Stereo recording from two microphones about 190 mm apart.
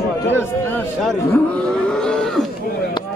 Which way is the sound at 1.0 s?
5° left (ahead or behind).